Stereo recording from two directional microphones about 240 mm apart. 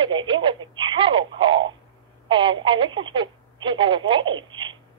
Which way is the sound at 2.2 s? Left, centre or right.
Centre.